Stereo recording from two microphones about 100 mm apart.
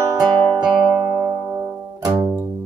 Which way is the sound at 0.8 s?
30° right (ahead or behind).